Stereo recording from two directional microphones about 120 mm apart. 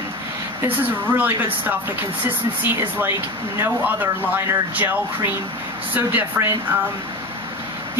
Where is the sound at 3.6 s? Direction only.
15° right (ahead or behind).